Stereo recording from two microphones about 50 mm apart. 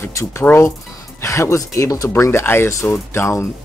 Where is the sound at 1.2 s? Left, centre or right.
Left.